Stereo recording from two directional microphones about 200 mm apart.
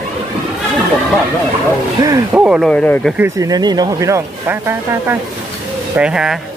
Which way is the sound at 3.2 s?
20° right (ahead or behind).